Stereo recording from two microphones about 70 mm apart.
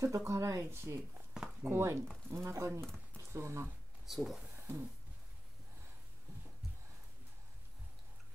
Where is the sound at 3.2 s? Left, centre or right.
Right.